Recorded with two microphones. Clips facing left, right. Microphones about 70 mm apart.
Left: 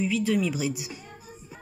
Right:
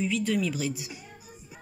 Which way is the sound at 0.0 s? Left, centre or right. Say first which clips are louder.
Left 2 dB; centre.